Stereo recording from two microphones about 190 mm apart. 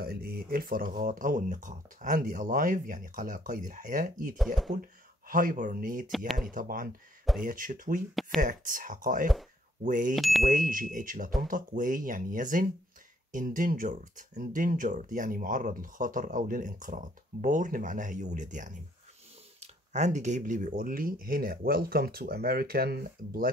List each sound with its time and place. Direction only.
0.0 s speech: 50° right (ahead or behind)
6.1 s speech: centre (ahead or behind)
6.5 s speech: 45° right (ahead or behind)
8.1 s speech: centre (ahead or behind)
8.4 s speech: 45° right (ahead or behind)
10.1 s speech: centre (ahead or behind)
10.5 s speech: 45° right (ahead or behind)